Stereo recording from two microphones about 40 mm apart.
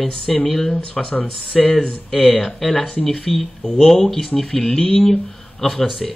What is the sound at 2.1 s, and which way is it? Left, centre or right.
Speech, left.